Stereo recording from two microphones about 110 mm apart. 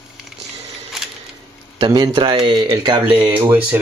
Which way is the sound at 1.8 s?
40° right (ahead or behind).